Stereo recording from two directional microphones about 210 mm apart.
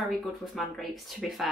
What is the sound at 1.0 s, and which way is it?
Speech, centre (ahead or behind).